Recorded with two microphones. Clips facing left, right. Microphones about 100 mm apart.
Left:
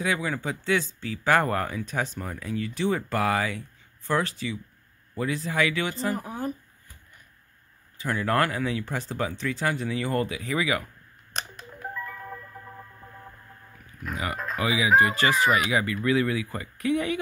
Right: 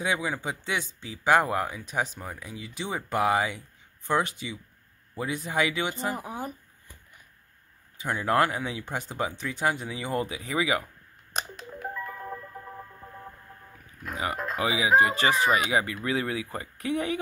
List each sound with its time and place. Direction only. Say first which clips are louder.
0.0 s speech: left 1 dB; 20° right (ahead or behind)
8.0 s speech: even; 20° right (ahead or behind)
11.3 s telephone dialing: right 2 dB; 10° right (ahead or behind)
12.1 s music: right 2 dB; 15° right (ahead or behind)
14.1 s speech: right 1 dB; 25° right (ahead or behind)